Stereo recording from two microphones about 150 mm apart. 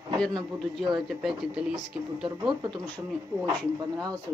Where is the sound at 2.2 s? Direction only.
30° right (ahead or behind).